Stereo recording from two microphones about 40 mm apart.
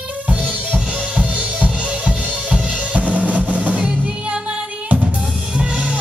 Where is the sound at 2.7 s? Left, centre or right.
Right.